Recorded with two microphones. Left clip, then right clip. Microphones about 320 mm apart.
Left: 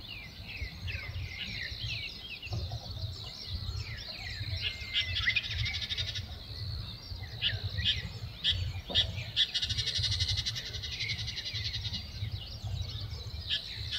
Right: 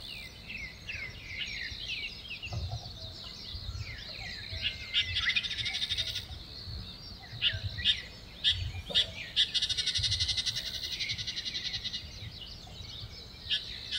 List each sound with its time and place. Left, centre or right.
4.6 s bird: centre
7.3 s bird: centre